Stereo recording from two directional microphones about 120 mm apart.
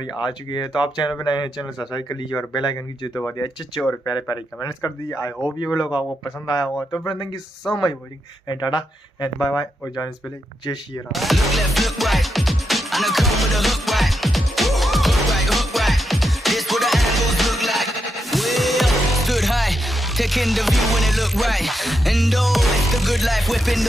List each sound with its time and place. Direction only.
0.5 s speech: 40° left (ahead or behind)
8.5 s speech: 35° left (ahead or behind)
11.1 s music: centre (ahead or behind)